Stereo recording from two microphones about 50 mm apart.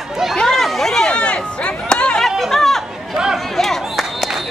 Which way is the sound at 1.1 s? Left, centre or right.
Centre.